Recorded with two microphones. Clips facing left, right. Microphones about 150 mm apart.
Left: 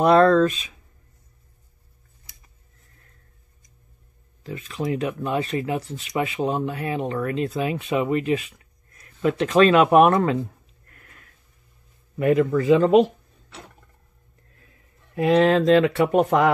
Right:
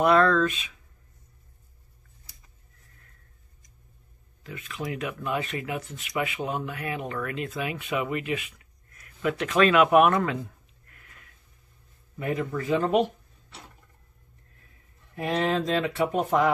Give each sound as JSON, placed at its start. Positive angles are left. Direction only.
{"t": 0.0, "sound": "speech", "side_deg": 35}
{"t": 4.4, "sound": "speech", "side_deg": 35}
{"t": 12.2, "sound": "speech", "side_deg": 75}
{"t": 15.1, "sound": "speech", "side_deg": 90}